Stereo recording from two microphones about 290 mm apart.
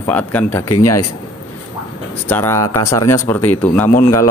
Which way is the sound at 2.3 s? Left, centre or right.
Centre.